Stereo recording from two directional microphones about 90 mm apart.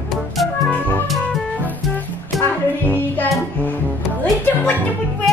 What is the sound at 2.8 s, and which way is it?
Music, 20° left (ahead or behind).